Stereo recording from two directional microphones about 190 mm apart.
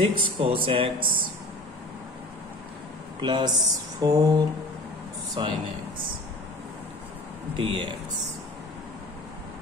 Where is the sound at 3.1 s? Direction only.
25° right (ahead or behind).